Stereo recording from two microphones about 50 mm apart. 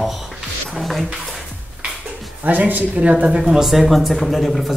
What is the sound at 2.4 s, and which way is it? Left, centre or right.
Speech, right.